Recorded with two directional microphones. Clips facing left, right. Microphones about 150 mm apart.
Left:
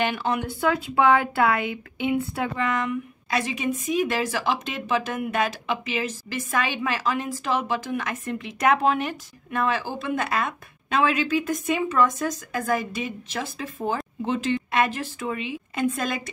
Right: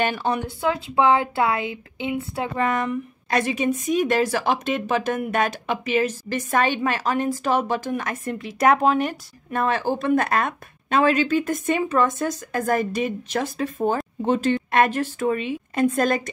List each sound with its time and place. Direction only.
0.0 s speech: 35° right (ahead or behind)
2.5 s a woman's voice: 40° right (ahead or behind)